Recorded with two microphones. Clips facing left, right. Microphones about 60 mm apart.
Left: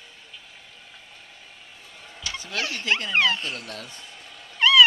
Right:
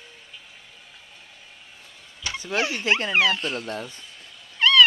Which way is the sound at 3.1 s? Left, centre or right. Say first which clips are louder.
Right 1 dB; centre.